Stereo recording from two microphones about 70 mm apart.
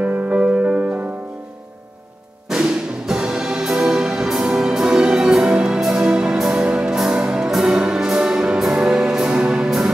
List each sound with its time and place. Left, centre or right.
0.0 s music: centre
2.5 s music: centre